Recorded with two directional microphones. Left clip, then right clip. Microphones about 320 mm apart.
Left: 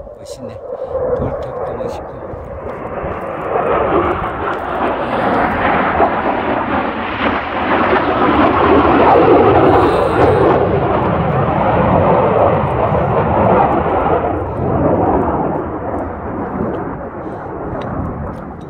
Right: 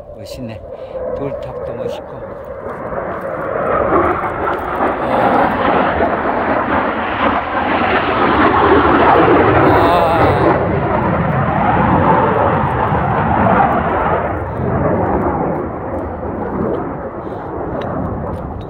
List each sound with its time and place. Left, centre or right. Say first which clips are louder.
3.9 s vehicle: right 1 dB; centre
6.6 s vehicle: right 2 dB; centre
7.6 s vehicle: left 3 dB; centre; by 15.1 s left